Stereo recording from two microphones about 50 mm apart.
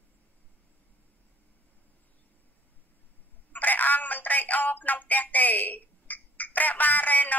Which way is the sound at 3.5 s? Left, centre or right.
Left.